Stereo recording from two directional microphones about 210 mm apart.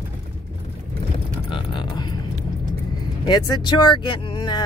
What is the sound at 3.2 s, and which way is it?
Speech, 20° left (ahead or behind).